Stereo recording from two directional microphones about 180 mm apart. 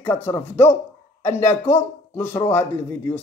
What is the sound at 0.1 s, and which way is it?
A man's voice, 10° left (ahead or behind).